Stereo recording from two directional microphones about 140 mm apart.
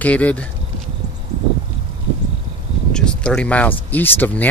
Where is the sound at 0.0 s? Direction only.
10° left (ahead or behind).